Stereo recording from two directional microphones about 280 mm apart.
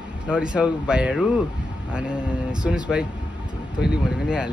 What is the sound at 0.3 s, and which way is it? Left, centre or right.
A man's voice, centre.